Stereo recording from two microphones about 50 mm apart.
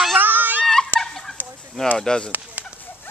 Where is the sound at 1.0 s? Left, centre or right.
Centre.